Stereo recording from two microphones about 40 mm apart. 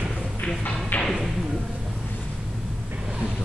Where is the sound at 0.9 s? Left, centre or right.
Left.